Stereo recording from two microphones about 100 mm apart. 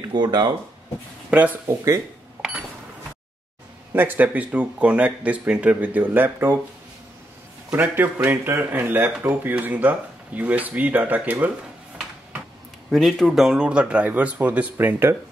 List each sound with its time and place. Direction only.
0.1 s speech: 45° right (ahead or behind)
1.3 s speech: 15° right (ahead or behind)
3.9 s speech: 20° right (ahead or behind)
7.7 s a man's voice: 20° right (ahead or behind)
12.9 s speech: centre (ahead or behind); by 15.1 s 20° right (ahead or behind)